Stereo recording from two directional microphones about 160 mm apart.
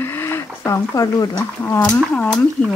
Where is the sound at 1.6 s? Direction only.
10° left (ahead or behind).